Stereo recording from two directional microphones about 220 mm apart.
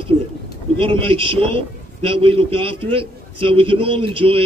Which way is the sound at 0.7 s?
25° right (ahead or behind).